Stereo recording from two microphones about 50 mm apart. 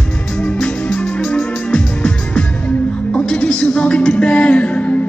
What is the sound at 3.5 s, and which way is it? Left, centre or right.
Music, centre.